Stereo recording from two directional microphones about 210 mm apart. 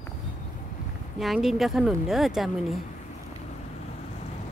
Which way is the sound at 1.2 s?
Centre (ahead or behind).